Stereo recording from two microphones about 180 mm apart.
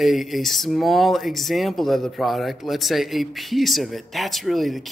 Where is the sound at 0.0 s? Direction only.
Centre (ahead or behind).